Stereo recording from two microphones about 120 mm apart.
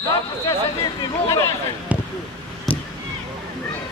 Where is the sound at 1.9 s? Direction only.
10° right (ahead or behind).